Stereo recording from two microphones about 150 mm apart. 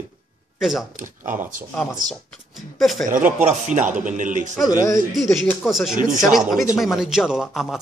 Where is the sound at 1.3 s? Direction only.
60° right (ahead or behind).